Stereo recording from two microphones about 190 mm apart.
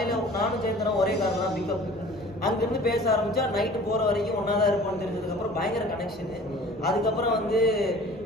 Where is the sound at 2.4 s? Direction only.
55° left (ahead or behind).